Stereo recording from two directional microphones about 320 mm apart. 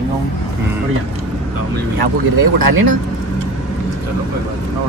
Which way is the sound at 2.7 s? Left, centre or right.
Right.